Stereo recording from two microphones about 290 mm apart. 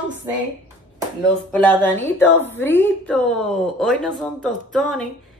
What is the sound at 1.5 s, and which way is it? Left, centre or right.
A woman's voice, centre.